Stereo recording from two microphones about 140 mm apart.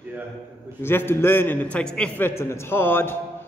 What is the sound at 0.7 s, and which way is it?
A man's voice, 15° left (ahead or behind).